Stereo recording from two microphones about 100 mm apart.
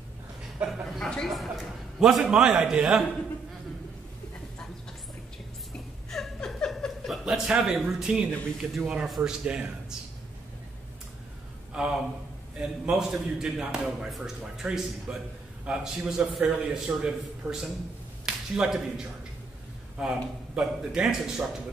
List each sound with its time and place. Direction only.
0.7 s a man's voice: 5° left (ahead or behind)
6.0 s chuckle: 5° left (ahead or behind)
8.5 s a man's voice: 10° right (ahead or behind)
11.7 s a man's voice: 5° right (ahead or behind)